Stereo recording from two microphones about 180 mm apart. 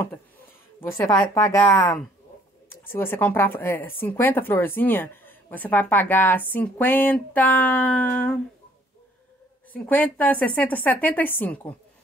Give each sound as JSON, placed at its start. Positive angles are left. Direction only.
{"t": 0.7, "sound": "speech", "side_deg": 15}
{"t": 9.7, "sound": "speech", "side_deg": 10}